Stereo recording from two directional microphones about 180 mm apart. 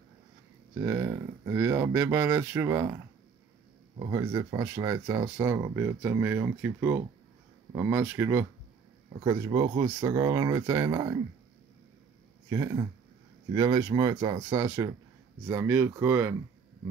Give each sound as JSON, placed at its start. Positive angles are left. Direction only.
{"t": 0.8, "sound": "speech", "side_deg": -15}
{"t": 4.0, "sound": "speech", "side_deg": -20}
{"t": 12.4, "sound": "speech", "side_deg": -20}